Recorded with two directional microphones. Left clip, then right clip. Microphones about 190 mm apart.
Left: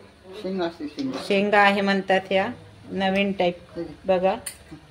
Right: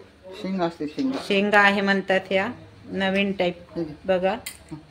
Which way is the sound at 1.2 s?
Centre (ahead or behind).